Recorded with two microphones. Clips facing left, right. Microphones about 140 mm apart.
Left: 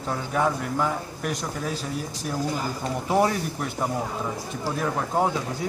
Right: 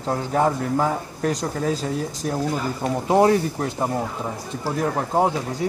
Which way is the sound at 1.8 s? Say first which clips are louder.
Right 5 dB; 55° right (ahead or behind).